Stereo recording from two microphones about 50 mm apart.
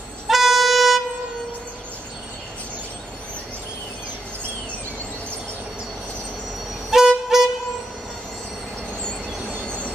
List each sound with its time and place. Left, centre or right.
0.3 s music: centre
6.9 s music: centre
9.7 s train: left